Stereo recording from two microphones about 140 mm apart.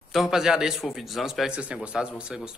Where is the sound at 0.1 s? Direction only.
5° right (ahead or behind).